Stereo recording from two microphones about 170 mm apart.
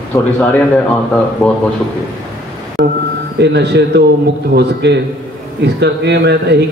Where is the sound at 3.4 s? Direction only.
75° right (ahead or behind).